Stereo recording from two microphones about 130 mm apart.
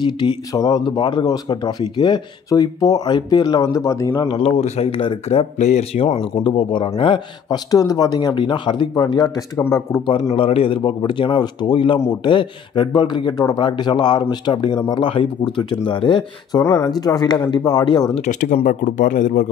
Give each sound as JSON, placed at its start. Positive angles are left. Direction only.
{"t": 0.0, "sound": "speech", "side_deg": 35}
{"t": 4.3, "sound": "speech", "side_deg": 50}
{"t": 6.0, "sound": "speech", "side_deg": 40}
{"t": 9.6, "sound": "speech", "side_deg": 20}
{"t": 10.3, "sound": "speech", "side_deg": 45}
{"t": 16.6, "sound": "speech", "side_deg": 25}
{"t": 18.4, "sound": "speech", "side_deg": 80}